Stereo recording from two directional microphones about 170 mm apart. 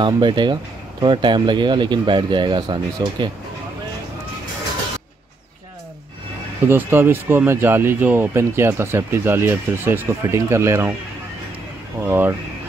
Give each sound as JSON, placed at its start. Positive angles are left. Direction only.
{"t": 0.0, "sound": "speech", "side_deg": -25}
{"t": 6.7, "sound": "speech", "side_deg": -15}
{"t": 12.0, "sound": "speech", "side_deg": -15}